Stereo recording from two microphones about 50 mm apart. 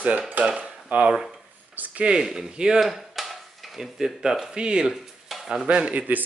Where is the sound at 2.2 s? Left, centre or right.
Centre.